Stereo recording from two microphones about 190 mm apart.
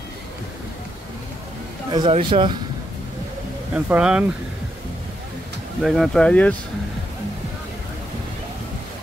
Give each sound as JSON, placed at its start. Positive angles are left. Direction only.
{"t": 1.9, "sound": "a man's voice", "side_deg": -25}
{"t": 3.7, "sound": "speech", "side_deg": -5}
{"t": 5.8, "sound": "speech", "side_deg": 0}